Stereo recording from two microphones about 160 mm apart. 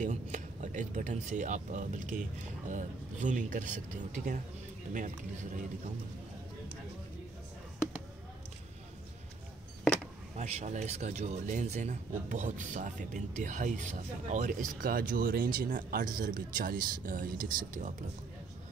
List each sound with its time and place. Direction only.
0.0 s speech: 50° right (ahead or behind)
10.3 s speech: 45° right (ahead or behind)